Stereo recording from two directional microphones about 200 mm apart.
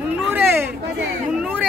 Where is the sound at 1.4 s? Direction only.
5° right (ahead or behind).